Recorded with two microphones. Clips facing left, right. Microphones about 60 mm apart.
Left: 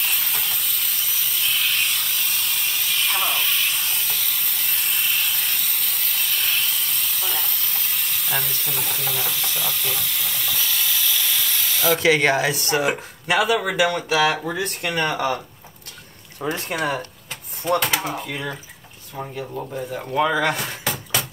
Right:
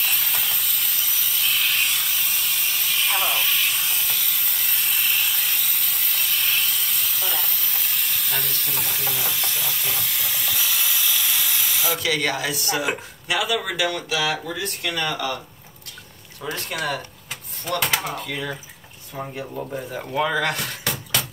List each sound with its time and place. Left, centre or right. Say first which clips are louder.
0.0 s steam: even; centre
12.0 s speech: left 7 dB; left
13.6 s speech: left 4 dB; left
16.4 s speech: left 4 dB; left
17.7 s speech: even; centre
19.2 s speech: left 1 dB; centre